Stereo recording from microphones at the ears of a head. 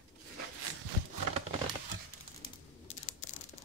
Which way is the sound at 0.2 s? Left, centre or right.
Right.